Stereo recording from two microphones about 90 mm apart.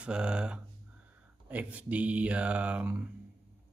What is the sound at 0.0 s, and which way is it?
Speech, 10° right (ahead or behind).